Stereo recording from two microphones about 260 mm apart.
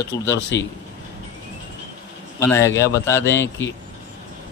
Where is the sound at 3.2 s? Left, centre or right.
Left.